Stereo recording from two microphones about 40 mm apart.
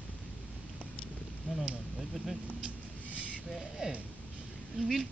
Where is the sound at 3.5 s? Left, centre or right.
Centre.